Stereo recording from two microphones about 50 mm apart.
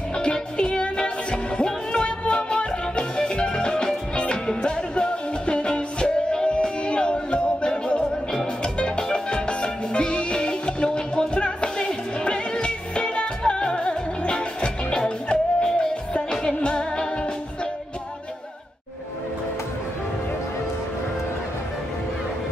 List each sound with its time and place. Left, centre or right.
0.1 s music: centre